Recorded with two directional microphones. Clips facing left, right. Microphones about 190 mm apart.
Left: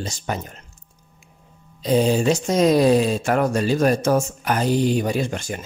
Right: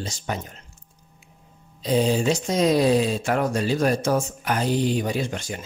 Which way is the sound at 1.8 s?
50° left (ahead or behind).